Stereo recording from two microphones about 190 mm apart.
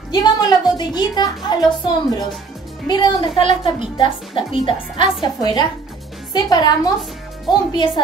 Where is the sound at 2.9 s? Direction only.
25° left (ahead or behind).